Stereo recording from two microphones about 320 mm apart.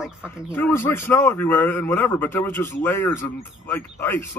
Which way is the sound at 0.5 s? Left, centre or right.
Centre.